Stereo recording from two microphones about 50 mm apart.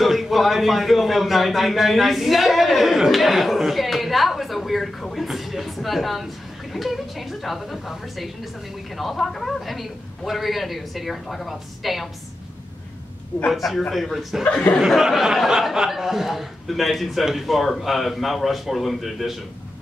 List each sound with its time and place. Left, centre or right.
0.0 s a man's voice: centre
13.7 s a man's voice: centre